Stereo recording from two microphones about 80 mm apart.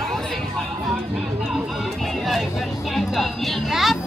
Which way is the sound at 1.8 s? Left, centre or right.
Centre.